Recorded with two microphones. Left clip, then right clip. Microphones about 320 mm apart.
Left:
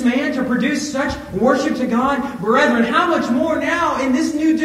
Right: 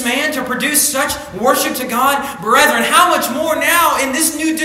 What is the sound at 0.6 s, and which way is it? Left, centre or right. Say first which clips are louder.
A man's voice: right 4 dB; right.